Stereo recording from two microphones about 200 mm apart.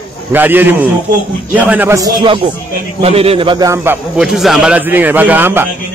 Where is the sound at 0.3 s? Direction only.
10° right (ahead or behind).